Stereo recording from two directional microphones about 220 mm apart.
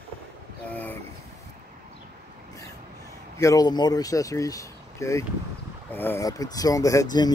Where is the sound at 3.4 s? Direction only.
15° left (ahead or behind).